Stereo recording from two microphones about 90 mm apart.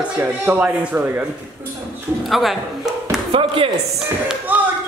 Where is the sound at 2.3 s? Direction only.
Centre (ahead or behind).